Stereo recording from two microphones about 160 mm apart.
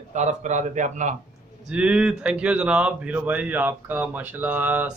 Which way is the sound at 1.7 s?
5° right (ahead or behind).